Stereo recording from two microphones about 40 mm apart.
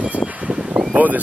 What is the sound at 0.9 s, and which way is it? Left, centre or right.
Boat, right.